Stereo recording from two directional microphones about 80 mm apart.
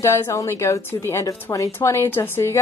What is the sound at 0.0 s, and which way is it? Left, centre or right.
A woman's voice, left.